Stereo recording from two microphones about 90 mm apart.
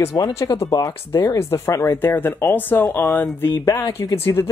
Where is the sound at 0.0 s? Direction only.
35° left (ahead or behind).